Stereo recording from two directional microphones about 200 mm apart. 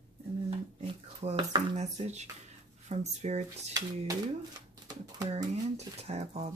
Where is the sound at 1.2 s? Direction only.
35° right (ahead or behind).